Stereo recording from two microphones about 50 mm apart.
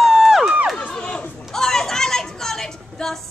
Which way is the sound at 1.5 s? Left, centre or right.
Centre.